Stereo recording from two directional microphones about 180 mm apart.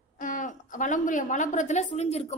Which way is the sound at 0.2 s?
45° left (ahead or behind).